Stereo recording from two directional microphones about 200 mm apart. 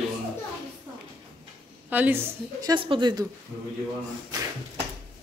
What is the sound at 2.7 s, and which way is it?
Speech, 25° right (ahead or behind).